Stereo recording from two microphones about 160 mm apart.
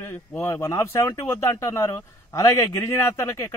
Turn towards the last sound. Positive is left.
turn(degrees=20)  # may be behind; listen again after turning